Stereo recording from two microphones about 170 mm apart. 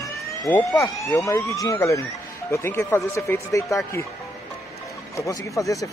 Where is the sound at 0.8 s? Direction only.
20° left (ahead or behind).